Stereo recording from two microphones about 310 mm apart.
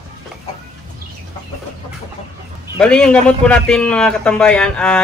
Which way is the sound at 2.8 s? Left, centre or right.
Centre.